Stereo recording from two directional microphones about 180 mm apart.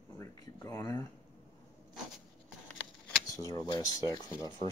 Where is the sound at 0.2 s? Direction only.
20° left (ahead or behind).